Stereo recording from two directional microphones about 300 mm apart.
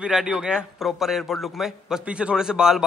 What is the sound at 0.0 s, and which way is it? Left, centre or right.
A man's voice, centre.